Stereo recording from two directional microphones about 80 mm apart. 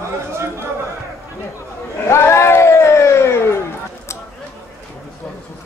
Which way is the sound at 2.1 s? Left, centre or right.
Left.